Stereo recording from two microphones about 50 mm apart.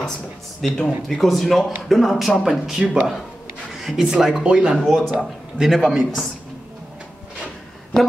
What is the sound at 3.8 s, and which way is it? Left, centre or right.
Speech, centre.